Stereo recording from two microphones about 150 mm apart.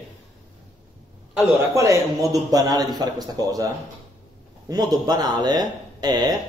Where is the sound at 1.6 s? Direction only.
20° right (ahead or behind).